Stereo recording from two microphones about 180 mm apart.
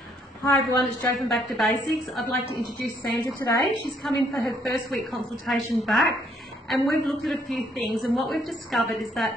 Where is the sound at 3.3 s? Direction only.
15° left (ahead or behind).